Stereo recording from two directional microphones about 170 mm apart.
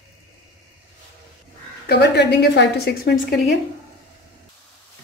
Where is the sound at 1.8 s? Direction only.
75° left (ahead or behind).